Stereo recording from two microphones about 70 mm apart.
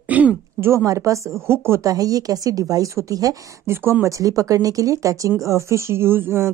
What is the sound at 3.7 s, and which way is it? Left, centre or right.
Speech, right.